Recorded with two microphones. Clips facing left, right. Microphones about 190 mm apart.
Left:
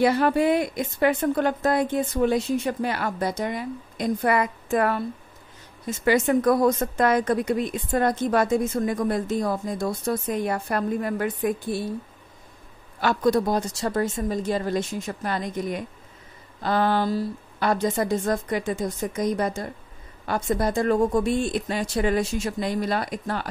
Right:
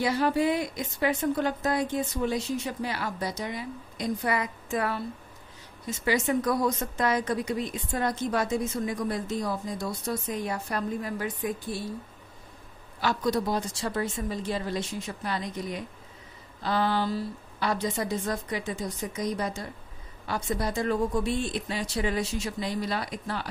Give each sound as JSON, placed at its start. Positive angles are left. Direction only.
{"t": 0.0, "sound": "a woman's voice", "side_deg": 55}
{"t": 13.0, "sound": "speech", "side_deg": 55}